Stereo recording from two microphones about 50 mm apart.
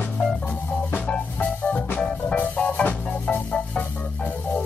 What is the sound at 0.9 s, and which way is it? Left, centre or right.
Music, left.